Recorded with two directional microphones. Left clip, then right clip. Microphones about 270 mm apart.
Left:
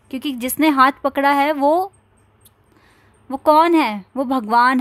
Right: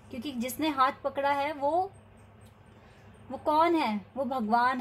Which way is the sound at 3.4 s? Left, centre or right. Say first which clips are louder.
Left 12 dB; left.